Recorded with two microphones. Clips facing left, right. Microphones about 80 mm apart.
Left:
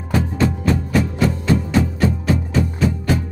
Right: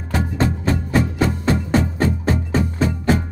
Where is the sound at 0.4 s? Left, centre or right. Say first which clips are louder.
Even; right.